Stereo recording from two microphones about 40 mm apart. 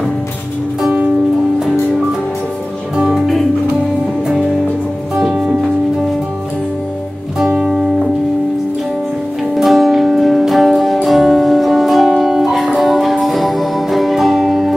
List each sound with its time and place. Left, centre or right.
0.8 s music: right
5.2 s music: centre
9.6 s music: centre